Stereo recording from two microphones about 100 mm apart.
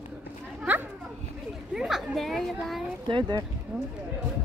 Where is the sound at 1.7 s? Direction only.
5° right (ahead or behind).